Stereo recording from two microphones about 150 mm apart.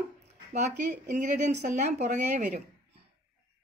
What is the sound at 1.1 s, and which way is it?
A woman's voice, 55° right (ahead or behind).